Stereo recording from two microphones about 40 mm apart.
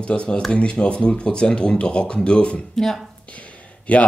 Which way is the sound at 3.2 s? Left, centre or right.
Left.